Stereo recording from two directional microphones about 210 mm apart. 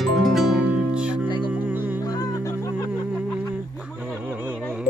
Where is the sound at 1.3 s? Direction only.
20° left (ahead or behind).